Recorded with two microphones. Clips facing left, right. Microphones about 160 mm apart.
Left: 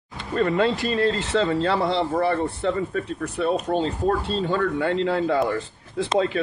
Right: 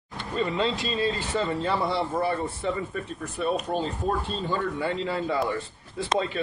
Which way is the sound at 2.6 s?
90° left.